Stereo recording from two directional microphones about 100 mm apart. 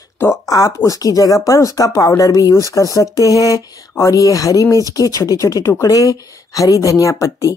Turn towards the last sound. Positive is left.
turn(degrees=30)  # may be behind; listen again after turning